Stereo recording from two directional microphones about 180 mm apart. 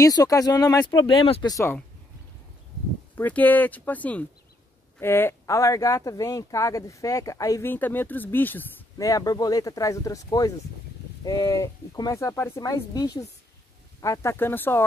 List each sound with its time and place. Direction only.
0.0 s speech: 20° left (ahead or behind)
1.5 s speech: 15° left (ahead or behind)
3.2 s speech: 10° left (ahead or behind)